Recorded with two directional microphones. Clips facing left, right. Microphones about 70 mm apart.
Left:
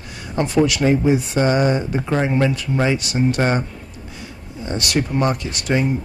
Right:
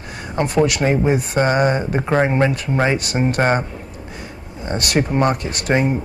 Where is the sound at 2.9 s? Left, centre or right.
Right.